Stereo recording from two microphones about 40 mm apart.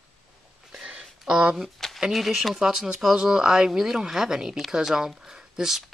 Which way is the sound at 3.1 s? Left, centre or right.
Centre.